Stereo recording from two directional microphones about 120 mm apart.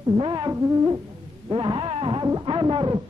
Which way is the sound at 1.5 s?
45° right (ahead or behind).